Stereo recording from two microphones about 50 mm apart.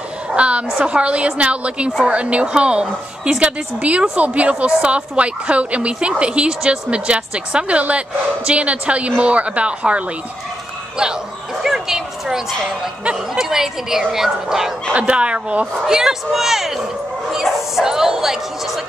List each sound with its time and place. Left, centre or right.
0.3 s a woman's voice: right
11.6 s speech: centre
14.9 s a woman's voice: right
15.8 s speech: centre